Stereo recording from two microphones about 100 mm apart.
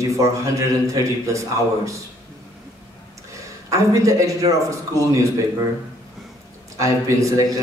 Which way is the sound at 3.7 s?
30° right (ahead or behind).